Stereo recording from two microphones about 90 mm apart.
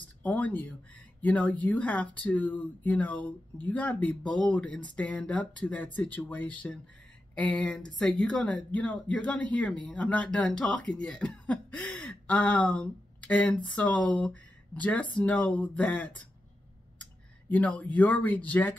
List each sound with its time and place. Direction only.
0.2 s speech: 15° left (ahead or behind)